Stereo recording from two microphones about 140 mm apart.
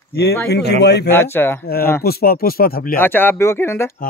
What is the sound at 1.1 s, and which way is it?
Speech, 15° left (ahead or behind).